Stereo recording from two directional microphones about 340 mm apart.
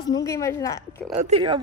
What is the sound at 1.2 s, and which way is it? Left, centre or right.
Speech, centre.